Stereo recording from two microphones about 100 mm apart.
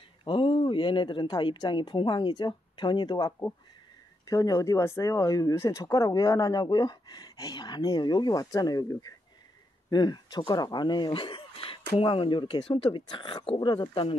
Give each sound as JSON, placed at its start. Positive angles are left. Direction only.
{"t": 0.2, "sound": "speech", "side_deg": 55}